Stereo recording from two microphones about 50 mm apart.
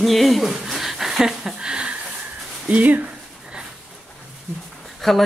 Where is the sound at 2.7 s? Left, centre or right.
Right.